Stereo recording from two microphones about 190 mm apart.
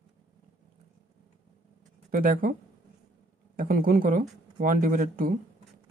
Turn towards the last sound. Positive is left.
turn(degrees=-45)  # may be behind; listen again after turning